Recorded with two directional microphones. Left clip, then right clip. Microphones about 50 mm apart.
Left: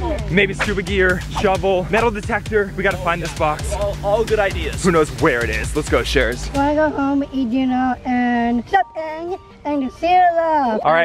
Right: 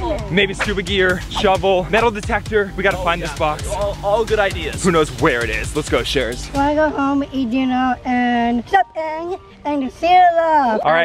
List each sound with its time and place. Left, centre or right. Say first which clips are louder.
0.6 s speech: right 1 dB; centre
3.3 s speech: even; left
3.8 s speech: right 1 dB; centre
4.9 s speech: even; centre
6.0 s speech: left 2 dB; left
6.5 s speech: right 2 dB; centre